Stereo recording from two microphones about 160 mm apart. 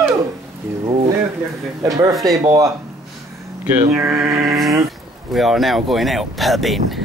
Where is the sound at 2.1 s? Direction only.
Centre (ahead or behind).